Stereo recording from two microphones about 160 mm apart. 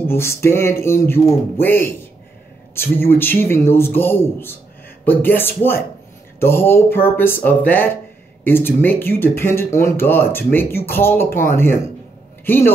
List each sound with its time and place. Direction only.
0.0 s speech: 15° left (ahead or behind)